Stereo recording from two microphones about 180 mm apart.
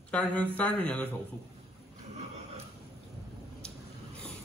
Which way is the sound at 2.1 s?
35° right (ahead or behind).